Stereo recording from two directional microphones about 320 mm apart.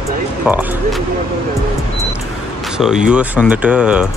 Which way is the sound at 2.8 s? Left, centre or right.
Centre.